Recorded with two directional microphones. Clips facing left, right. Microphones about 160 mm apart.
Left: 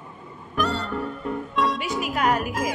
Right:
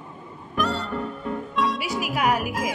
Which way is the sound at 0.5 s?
Centre (ahead or behind).